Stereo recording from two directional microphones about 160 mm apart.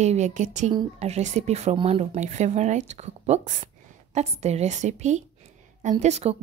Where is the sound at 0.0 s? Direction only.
45° right (ahead or behind).